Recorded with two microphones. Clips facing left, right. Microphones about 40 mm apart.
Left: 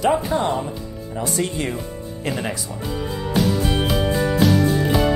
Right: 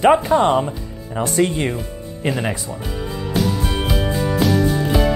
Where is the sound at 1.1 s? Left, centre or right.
Right.